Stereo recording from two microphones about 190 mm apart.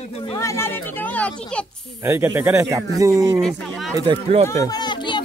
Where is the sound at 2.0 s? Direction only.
15° right (ahead or behind).